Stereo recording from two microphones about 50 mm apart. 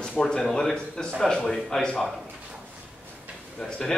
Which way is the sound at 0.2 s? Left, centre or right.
Centre.